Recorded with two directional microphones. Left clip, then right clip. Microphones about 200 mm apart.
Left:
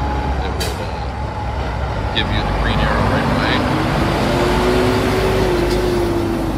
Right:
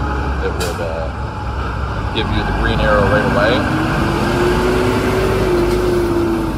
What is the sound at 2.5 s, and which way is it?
Speech, 45° left (ahead or behind).